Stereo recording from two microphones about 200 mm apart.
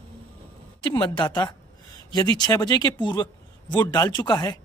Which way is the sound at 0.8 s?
25° left (ahead or behind).